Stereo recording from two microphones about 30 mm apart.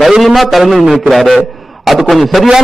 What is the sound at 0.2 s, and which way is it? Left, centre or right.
Speech, centre.